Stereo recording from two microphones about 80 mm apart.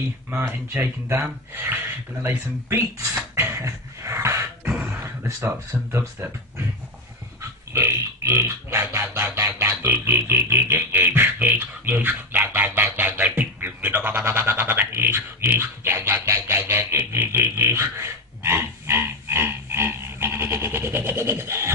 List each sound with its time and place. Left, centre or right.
0.3 s speech: right
3.3 s beatboxing: right
5.0 s speech: right
7.7 s a sound: right
10.0 s beatboxing: right
15.6 s a sound: right